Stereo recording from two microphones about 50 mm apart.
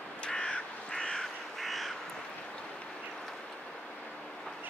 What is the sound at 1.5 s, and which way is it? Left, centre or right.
Crow, centre.